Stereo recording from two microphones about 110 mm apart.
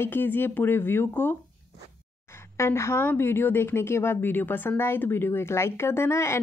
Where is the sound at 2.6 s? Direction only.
25° left (ahead or behind).